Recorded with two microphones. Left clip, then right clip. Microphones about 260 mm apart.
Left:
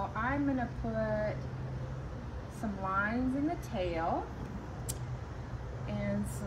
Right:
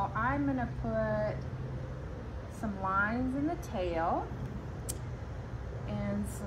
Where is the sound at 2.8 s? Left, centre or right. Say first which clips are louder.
Right 2 dB; centre.